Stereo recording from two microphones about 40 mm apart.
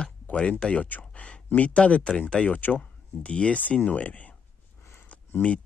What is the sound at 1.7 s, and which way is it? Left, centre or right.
Speech, left.